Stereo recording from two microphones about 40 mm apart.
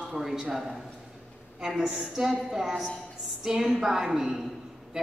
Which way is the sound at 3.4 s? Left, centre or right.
Centre.